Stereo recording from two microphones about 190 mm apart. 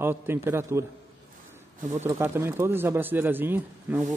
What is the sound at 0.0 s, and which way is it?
Speech, 10° right (ahead or behind).